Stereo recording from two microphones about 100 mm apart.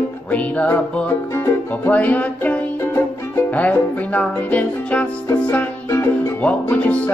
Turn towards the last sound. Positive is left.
turn(degrees=15)  # may be behind; listen again after turning